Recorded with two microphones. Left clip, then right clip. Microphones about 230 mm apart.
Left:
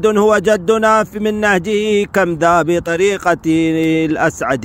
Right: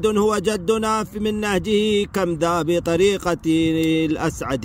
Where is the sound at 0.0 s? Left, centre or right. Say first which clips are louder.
Left 7 dB; centre.